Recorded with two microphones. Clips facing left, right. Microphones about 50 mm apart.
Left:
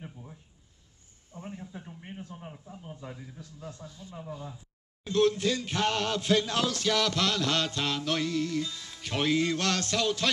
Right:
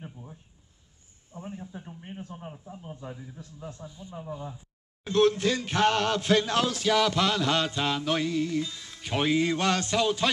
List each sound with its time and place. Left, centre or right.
0.0 s a sound: centre
1.3 s a man's voice: right
1.7 s speech: centre
2.7 s mantra: centre
5.0 s speech: right
6.7 s mantra: centre